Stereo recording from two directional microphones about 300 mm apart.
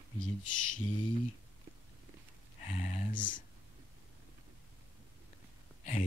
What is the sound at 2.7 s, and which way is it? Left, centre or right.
Speech, left.